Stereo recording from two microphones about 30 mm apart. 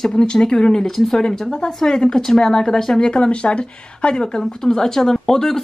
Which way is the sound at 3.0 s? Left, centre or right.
Left.